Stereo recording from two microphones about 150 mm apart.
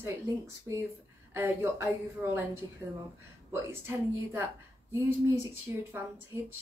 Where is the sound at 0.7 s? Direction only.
20° right (ahead or behind).